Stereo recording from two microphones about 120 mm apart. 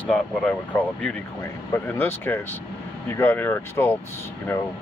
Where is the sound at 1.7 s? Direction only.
20° left (ahead or behind).